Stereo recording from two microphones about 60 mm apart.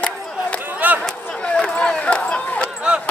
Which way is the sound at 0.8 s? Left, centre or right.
Right.